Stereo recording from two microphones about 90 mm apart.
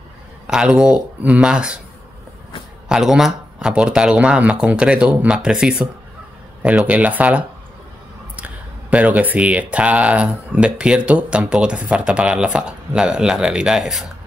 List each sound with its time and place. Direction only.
0.5 s speech: 10° right (ahead or behind)
2.9 s speech: 5° right (ahead or behind)
8.9 s speech: 15° right (ahead or behind)